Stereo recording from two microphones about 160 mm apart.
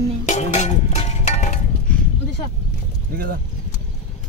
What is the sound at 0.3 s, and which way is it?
Music, 45° left (ahead or behind).